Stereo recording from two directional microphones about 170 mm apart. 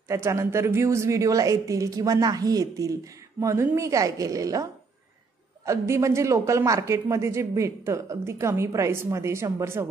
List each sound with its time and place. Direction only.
0.1 s speech: 15° right (ahead or behind)
5.7 s speech: 15° right (ahead or behind)